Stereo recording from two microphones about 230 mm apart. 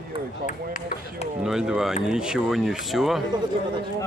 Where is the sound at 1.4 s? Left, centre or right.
Centre.